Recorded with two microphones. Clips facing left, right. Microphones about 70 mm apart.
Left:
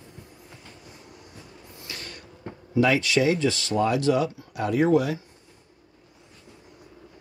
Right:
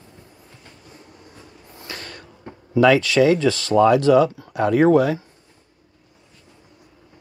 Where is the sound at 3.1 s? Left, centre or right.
Right.